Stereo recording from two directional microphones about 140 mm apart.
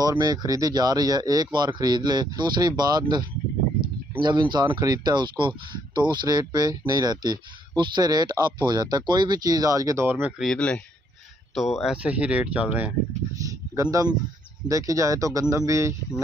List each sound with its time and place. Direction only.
0.2 s speech: 25° right (ahead or behind)
10.4 s speech: 5° left (ahead or behind); by 12.9 s 10° right (ahead or behind)
13.4 s a sound: 25° right (ahead or behind)
14.7 s speech: 25° right (ahead or behind)